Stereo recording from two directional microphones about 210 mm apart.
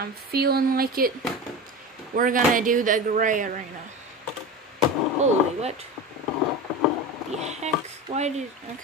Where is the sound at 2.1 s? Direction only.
40° right (ahead or behind).